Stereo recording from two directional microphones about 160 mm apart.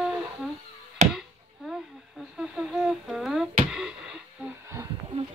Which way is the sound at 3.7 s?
5° right (ahead or behind).